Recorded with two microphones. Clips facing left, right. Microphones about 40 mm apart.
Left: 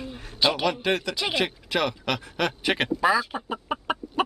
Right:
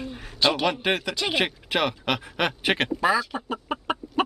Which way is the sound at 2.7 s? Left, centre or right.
Centre.